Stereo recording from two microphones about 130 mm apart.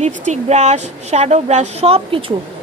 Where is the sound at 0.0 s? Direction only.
60° right (ahead or behind).